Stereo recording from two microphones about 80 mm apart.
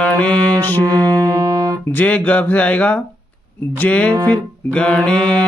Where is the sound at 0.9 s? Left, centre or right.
Right.